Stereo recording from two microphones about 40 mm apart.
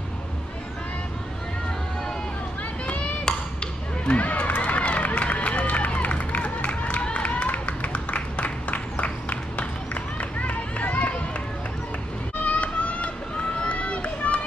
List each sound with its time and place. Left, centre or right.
4.1 s run: left
7.2 s a sound: left
10.4 s run: left
12.4 s run: left